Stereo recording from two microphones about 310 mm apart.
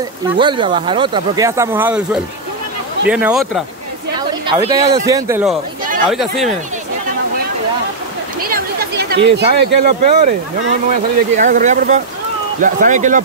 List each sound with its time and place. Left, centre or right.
0.4 s speech: centre
8.4 s a sound: right
9.8 s speech: right